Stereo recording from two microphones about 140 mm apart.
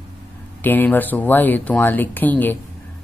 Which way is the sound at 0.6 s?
15° left (ahead or behind).